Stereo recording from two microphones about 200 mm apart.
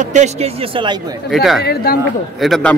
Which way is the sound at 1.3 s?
Centre (ahead or behind).